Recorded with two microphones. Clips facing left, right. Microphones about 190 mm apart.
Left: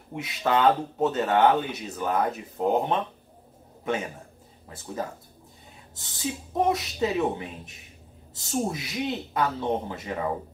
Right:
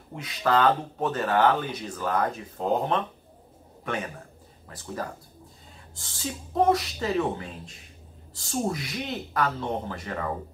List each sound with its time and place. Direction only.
0.1 s a man's voice: 20° left (ahead or behind)
5.9 s speech: 20° left (ahead or behind)